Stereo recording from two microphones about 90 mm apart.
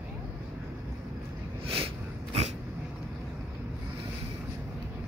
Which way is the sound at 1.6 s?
90° right.